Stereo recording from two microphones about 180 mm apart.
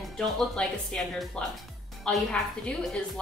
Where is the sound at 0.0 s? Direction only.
Centre (ahead or behind).